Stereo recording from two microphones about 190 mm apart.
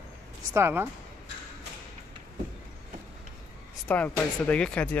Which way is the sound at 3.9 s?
10° left (ahead or behind).